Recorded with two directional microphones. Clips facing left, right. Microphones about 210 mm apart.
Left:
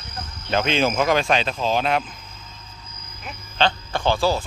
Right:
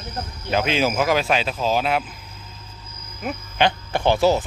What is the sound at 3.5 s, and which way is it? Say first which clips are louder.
Speech: right 1 dB; 15° right (ahead or behind).